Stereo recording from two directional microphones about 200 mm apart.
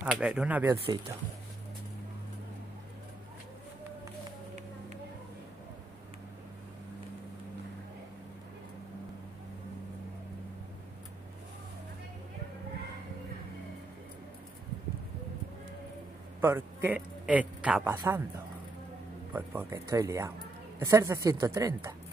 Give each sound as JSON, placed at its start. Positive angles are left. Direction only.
{"t": 0.0, "sound": "speech", "side_deg": -5}
{"t": 0.9, "sound": "a woman's voice", "side_deg": -20}
{"t": 16.3, "sound": "a man's voice", "side_deg": -10}
{"t": 19.3, "sound": "a woman's voice", "side_deg": -15}